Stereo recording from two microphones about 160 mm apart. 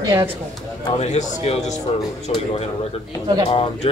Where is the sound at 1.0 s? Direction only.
40° left (ahead or behind).